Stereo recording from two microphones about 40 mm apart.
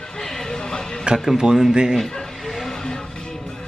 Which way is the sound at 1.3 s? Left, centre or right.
Centre.